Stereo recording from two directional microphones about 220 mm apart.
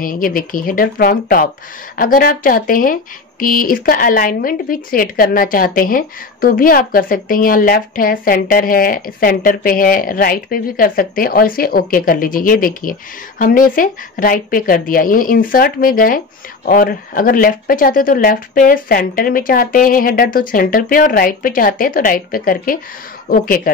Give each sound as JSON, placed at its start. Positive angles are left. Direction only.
{"t": 0.0, "sound": "speech", "side_deg": 40}